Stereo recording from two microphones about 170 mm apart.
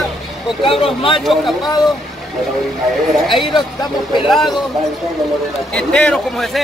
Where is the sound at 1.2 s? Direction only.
Centre (ahead or behind).